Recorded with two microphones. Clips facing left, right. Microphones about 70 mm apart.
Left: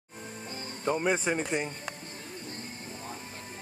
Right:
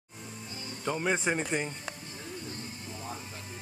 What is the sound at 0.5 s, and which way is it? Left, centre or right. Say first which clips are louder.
Music: left 3 dB; left.